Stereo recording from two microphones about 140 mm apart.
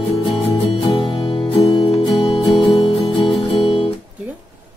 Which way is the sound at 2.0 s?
Centre (ahead or behind).